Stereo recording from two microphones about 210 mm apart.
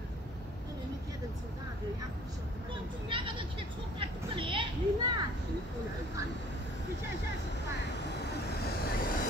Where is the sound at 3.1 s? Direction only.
25° right (ahead or behind).